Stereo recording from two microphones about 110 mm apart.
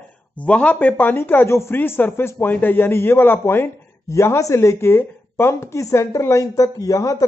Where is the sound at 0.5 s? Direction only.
10° left (ahead or behind).